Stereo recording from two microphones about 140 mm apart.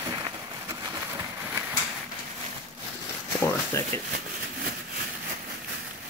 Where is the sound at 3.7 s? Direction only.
20° left (ahead or behind).